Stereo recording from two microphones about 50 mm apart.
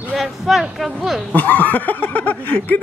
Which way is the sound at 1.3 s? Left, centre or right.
Left.